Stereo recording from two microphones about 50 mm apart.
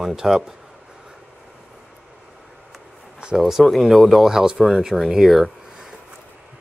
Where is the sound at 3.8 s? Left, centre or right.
Centre.